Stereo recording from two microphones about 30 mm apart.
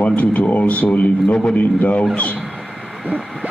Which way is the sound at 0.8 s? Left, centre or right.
Left.